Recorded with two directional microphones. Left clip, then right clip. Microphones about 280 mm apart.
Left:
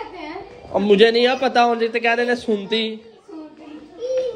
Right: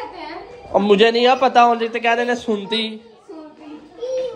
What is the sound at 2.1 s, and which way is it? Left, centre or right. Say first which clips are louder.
Speech: right 3 dB; right.